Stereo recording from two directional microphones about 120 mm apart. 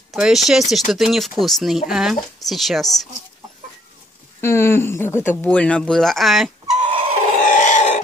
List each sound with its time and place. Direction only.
0.1 s speech: centre (ahead or behind)
4.4 s speech: 20° left (ahead or behind); by 6.5 s centre (ahead or behind)
6.8 s dog: 50° right (ahead or behind)
7.4 s a sound: 90° left